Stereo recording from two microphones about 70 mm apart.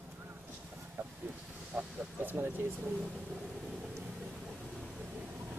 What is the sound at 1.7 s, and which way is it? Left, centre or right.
Speech, centre.